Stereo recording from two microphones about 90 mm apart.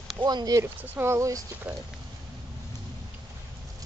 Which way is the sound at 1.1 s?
35° right (ahead or behind).